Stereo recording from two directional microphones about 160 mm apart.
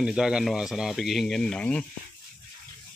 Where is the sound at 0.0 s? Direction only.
5° right (ahead or behind).